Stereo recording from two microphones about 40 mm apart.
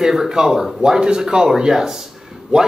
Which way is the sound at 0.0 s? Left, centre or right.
Centre.